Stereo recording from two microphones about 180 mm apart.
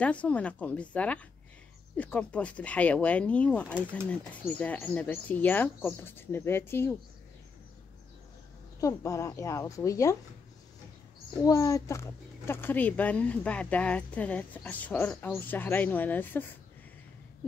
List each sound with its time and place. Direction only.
0.0 s speech: 5° left (ahead or behind)
8.8 s speech: 15° left (ahead or behind)
11.4 s speech: 20° left (ahead or behind)